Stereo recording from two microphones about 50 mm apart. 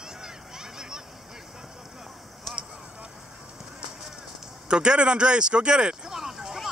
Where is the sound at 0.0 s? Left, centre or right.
Centre.